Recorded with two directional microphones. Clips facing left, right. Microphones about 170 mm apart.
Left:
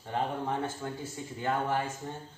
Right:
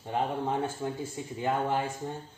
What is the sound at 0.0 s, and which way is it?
Speech, 15° right (ahead or behind).